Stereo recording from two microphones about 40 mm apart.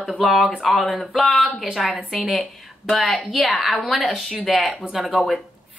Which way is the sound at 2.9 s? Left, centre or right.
Left.